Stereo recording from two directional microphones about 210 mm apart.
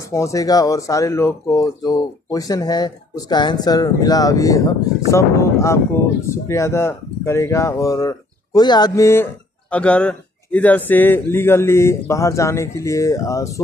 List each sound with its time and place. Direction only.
0.1 s speech: 15° left (ahead or behind)